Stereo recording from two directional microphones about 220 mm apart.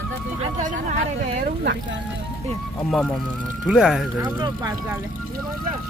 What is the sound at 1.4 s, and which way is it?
Speech, 50° right (ahead or behind).